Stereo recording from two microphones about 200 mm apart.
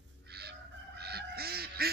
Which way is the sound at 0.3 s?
55° right (ahead or behind).